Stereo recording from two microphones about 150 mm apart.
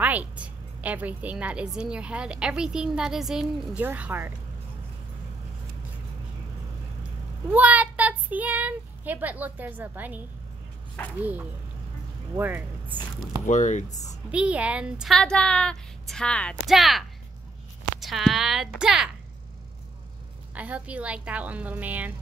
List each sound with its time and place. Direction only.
0.0 s a woman's voice: 10° right (ahead or behind)
7.5 s child singing: 10° right (ahead or behind)
11.1 s a woman's voice: 10° right (ahead or behind)
13.5 s speech: 55° left (ahead or behind)
14.3 s a woman's voice: 10° right (ahead or behind)
18.0 s a woman's voice: centre (ahead or behind)
20.5 s a woman's voice: 10° right (ahead or behind)